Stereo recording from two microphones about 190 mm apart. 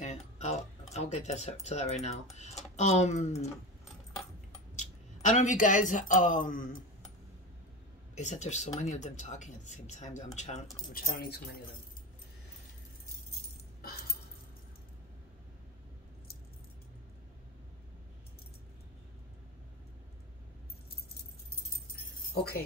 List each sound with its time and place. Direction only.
0.0 s speech: 35° left (ahead or behind)
5.3 s speech: 40° left (ahead or behind)
8.2 s speech: 40° left (ahead or behind)
10.9 s speech: 50° left (ahead or behind)
13.7 s keys jangling: 50° left (ahead or behind)
22.3 s jingle bell: 55° left (ahead or behind)